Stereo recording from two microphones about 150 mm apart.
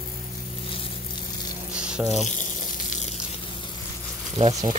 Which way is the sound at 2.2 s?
60° left (ahead or behind).